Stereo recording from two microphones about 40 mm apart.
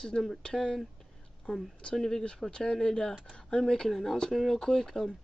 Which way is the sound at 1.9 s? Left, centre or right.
Centre.